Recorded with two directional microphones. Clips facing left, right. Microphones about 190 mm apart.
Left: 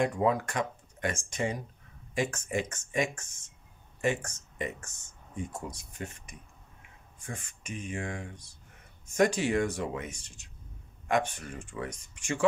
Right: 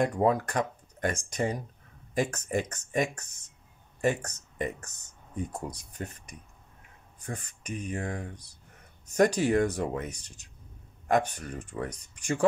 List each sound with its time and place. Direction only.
0.0 s speech: 40° right (ahead or behind)